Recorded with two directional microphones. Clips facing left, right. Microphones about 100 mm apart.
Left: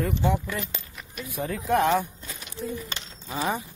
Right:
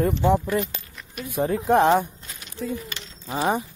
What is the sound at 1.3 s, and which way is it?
Speech, 30° right (ahead or behind).